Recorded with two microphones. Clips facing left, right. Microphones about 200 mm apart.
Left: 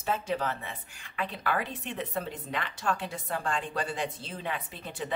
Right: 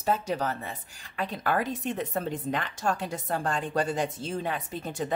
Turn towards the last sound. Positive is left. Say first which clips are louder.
# right 5 dB
turn(degrees=-45)  # may be behind; listen again after turning